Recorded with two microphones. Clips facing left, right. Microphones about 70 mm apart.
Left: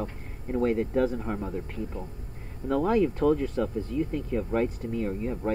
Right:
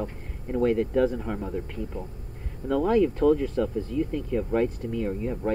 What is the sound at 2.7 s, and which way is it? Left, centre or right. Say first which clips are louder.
Speech: right 2 dB; left.